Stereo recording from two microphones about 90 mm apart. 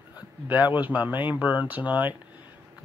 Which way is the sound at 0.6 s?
20° right (ahead or behind).